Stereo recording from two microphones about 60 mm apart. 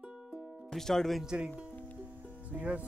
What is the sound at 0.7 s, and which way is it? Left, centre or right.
Speech, centre.